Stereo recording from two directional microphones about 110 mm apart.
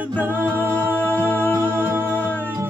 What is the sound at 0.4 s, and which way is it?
Music, 15° left (ahead or behind).